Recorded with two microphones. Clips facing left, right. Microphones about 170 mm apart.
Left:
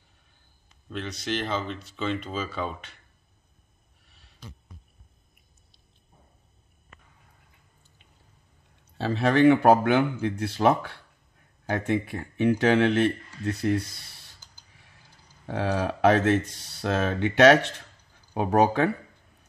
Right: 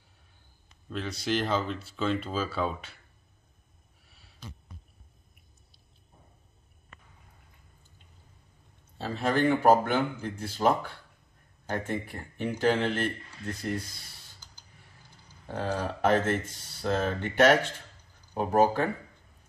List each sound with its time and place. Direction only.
0.8 s speech: 5° right (ahead or behind)
4.1 s a sound: 5° right (ahead or behind)
8.9 s speech: 80° left
15.5 s speech: 75° left (ahead or behind)